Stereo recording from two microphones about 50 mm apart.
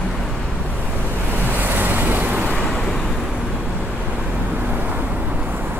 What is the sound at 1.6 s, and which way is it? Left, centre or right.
Vehicle, right.